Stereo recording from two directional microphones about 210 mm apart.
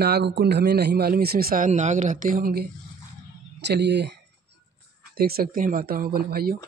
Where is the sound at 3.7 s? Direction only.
55° right (ahead or behind).